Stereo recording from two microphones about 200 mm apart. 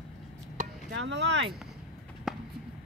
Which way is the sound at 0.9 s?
60° right (ahead or behind).